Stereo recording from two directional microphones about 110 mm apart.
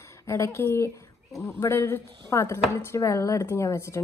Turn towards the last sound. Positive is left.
turn(degrees=25)  # may be behind; listen again after turning